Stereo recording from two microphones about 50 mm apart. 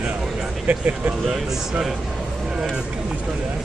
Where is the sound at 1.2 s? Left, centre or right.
Centre.